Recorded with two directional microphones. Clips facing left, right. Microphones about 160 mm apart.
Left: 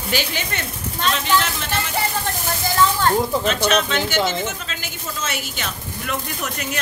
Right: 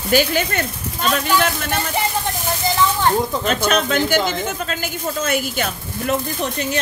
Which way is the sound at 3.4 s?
50° right (ahead or behind).